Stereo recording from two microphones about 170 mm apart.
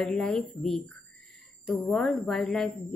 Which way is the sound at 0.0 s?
5° left (ahead or behind).